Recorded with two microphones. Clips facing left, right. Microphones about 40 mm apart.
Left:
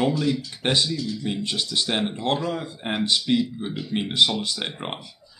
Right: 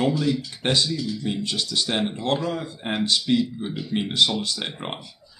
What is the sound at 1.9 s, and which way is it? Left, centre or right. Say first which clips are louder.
Speech: right 1 dB; centre.